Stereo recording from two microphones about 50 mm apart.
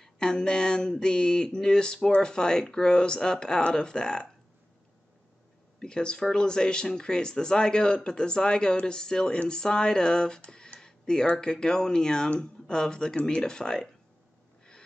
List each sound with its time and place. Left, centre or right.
0.0 s speech: centre
5.8 s speech: centre